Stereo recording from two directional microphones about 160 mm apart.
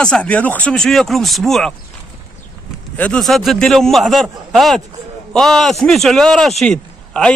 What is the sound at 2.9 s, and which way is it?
Speech, 5° left (ahead or behind).